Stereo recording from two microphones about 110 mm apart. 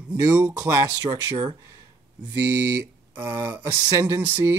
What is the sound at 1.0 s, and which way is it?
Speech, 35° right (ahead or behind).